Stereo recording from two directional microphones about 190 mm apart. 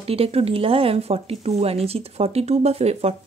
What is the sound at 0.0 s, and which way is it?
Speech, 30° right (ahead or behind).